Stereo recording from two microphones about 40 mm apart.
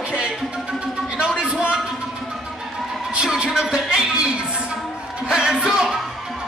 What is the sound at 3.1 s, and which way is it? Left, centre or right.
Music, right.